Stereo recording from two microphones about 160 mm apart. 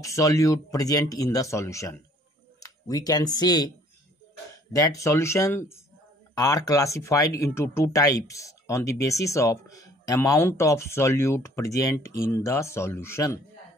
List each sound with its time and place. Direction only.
0.0 s speech: 20° left (ahead or behind)
4.7 s speech: 20° left (ahead or behind)